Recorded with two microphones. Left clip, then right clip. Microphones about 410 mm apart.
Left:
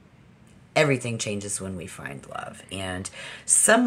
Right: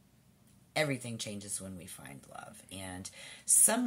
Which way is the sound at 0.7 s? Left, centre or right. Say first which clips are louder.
Left 12 dB; right.